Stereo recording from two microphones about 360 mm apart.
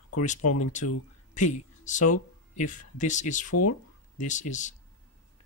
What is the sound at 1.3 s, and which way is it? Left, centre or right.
Speech, centre.